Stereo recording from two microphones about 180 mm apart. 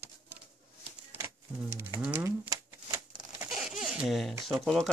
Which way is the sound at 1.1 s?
15° right (ahead or behind).